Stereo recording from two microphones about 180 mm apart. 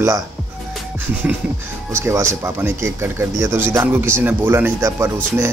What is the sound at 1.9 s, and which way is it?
Speech, 15° right (ahead or behind).